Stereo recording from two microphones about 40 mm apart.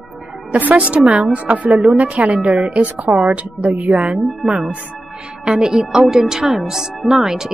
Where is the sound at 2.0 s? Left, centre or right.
Right.